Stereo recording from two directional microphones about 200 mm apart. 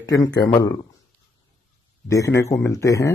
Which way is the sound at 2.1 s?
15° left (ahead or behind).